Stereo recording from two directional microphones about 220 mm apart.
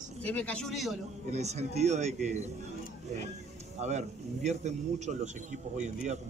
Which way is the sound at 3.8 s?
30° right (ahead or behind).